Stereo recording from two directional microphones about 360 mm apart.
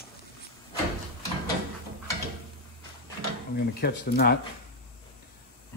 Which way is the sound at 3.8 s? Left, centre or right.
Left.